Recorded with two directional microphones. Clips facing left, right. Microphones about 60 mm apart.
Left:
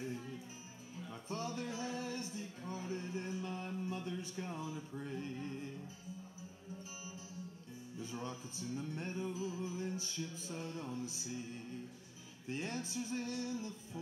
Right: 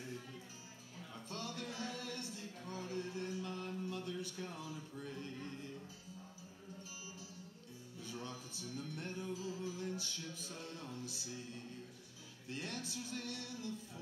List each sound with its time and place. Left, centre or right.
1.1 s a sound: left
8.0 s music: left
12.4 s male singing: left